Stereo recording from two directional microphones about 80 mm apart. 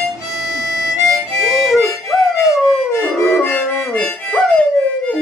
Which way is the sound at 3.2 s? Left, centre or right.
Left.